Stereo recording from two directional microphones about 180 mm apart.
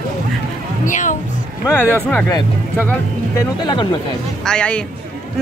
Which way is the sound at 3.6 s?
25° left (ahead or behind).